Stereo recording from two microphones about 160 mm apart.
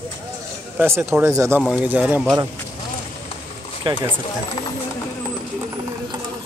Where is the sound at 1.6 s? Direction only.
5° right (ahead or behind).